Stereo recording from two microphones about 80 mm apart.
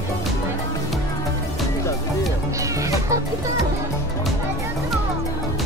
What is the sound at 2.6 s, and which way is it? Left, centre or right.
Music, right.